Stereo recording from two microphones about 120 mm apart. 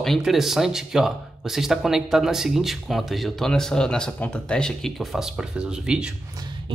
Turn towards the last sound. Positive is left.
turn(degrees=-40)  # may be behind; listen again after turning